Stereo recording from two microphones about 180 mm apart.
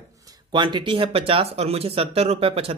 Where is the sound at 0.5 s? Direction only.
25° right (ahead or behind).